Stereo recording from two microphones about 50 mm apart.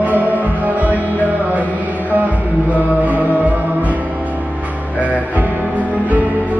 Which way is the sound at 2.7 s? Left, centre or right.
Right.